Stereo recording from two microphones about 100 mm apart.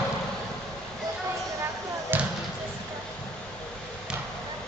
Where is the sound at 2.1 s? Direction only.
20° right (ahead or behind).